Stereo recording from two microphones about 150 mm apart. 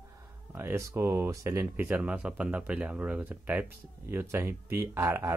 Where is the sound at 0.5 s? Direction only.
15° right (ahead or behind).